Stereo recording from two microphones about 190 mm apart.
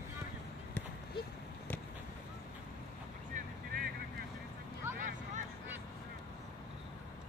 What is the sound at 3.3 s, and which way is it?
Vehicle, 55° right (ahead or behind).